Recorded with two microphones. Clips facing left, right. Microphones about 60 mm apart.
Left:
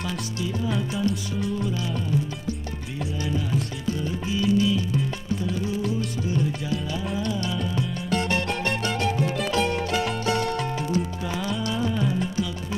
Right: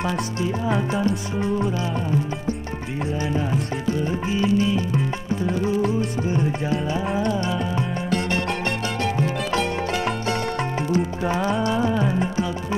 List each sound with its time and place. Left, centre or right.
0.0 s music: right
3.3 s music: right
10.9 s music: right